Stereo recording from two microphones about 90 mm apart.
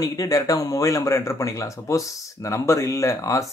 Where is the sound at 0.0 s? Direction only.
40° left (ahead or behind).